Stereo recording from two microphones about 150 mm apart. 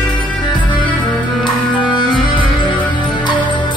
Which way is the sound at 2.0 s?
30° left (ahead or behind).